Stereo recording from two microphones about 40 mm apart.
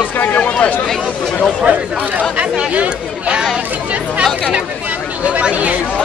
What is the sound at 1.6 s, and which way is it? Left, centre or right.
Speech, right.